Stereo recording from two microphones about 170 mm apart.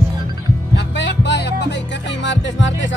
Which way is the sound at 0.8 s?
90° left.